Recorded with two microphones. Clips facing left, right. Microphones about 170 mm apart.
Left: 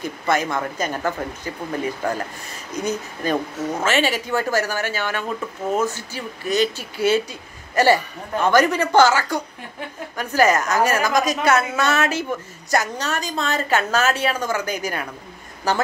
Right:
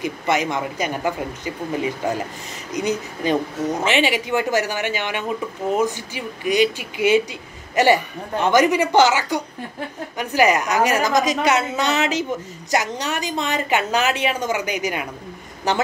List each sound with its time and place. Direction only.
0.0 s speech: 15° right (ahead or behind)